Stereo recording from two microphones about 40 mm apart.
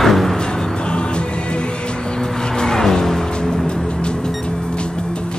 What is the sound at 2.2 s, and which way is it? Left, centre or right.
Music, centre.